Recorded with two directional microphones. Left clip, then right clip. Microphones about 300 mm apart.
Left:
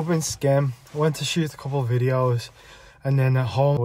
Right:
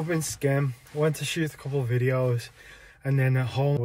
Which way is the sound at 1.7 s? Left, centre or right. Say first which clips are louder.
Left 3 dB; centre.